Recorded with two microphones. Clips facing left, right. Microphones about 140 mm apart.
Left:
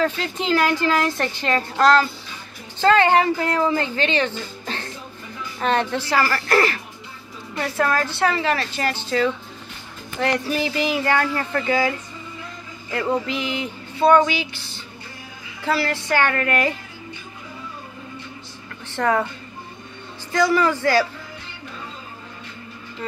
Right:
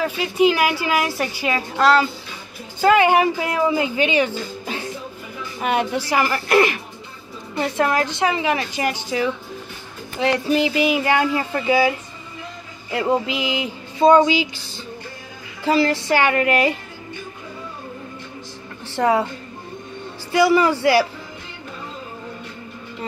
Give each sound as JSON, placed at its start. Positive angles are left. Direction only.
{"t": 0.0, "sound": "speech", "side_deg": -10}
{"t": 10.4, "sound": "speech", "side_deg": -15}
{"t": 12.9, "sound": "speech", "side_deg": -15}
{"t": 15.6, "sound": "speech", "side_deg": -15}
{"t": 18.9, "sound": "speech", "side_deg": -10}
{"t": 20.3, "sound": "speech", "side_deg": -10}